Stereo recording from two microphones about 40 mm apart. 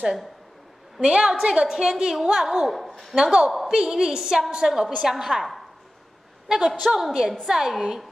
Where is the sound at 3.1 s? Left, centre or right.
Centre.